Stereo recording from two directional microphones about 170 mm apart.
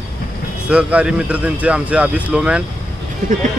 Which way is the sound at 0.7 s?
5° right (ahead or behind).